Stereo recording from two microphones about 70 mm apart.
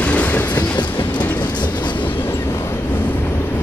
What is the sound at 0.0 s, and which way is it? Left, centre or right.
Train, left.